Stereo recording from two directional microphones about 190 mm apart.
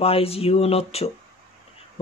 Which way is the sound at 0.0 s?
30° left (ahead or behind).